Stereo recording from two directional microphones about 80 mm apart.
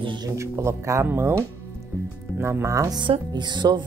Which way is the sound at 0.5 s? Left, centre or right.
Right.